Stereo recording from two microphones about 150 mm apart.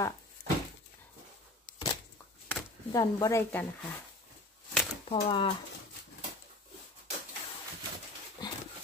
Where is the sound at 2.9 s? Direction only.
20° left (ahead or behind).